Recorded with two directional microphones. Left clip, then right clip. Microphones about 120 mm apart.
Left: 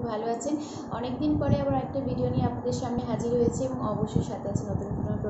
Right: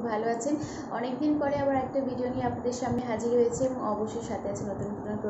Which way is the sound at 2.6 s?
10° right (ahead or behind).